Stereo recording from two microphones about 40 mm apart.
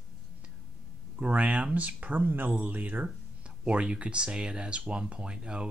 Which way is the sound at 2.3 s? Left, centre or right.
Right.